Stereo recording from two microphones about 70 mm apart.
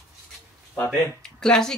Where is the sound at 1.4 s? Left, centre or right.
Centre.